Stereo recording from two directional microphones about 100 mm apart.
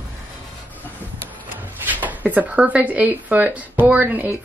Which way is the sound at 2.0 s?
15° right (ahead or behind).